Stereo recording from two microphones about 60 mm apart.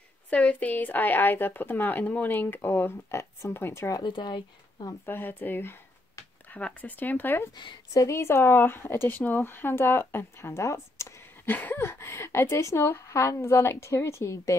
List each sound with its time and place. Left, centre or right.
0.3 s speech: left
3.1 s a woman's voice: left
5.0 s speech: left
6.5 s speech: left
7.9 s a woman's voice: left
8.2 s speech: left
10.6 s speech: left
11.4 s speech: left
11.8 s a woman's voice: left